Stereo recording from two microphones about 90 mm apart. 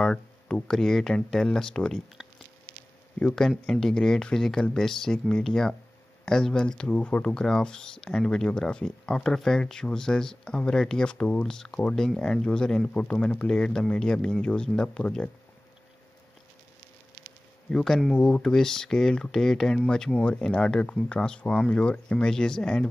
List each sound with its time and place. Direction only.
0.0 s speech: 10° left (ahead or behind)
3.2 s speech: 10° left (ahead or behind)
17.6 s speech: 5° left (ahead or behind)